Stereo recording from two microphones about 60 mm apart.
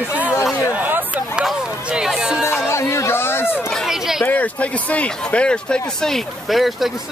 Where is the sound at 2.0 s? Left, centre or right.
Centre.